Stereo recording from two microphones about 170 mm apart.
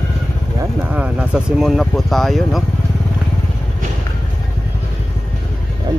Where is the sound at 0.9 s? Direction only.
10° right (ahead or behind).